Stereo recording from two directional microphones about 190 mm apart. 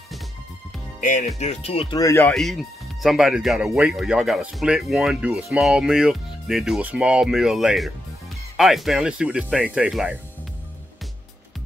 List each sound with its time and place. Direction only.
1.0 s speech: 40° left (ahead or behind)
2.0 s speech: 15° left (ahead or behind)
2.3 s speech: centre (ahead or behind)